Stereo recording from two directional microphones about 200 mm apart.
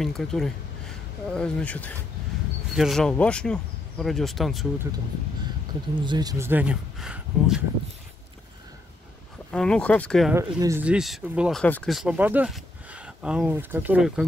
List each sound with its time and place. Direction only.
0.0 s speech: centre (ahead or behind)
5.9 s speech: 20° right (ahead or behind); by 7.6 s 5° right (ahead or behind)
9.5 s speech: 5° left (ahead or behind)
10.3 s speech: 15° right (ahead or behind)
10.8 s speech: 5° right (ahead or behind)